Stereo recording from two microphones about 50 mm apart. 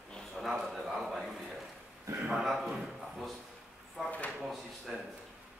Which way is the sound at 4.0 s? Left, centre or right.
Centre.